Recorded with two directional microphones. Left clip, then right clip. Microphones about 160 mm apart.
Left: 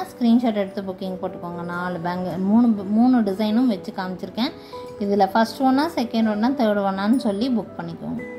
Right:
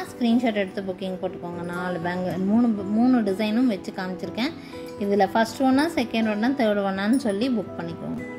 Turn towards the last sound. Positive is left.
turn(degrees=-15)  # may be behind; listen again after turning